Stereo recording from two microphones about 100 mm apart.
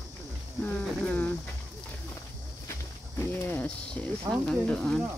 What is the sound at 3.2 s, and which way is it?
Speech, 20° left (ahead or behind).